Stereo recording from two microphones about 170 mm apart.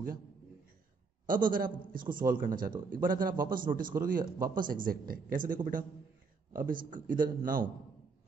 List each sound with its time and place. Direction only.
1.2 s a man's voice: 55° right (ahead or behind)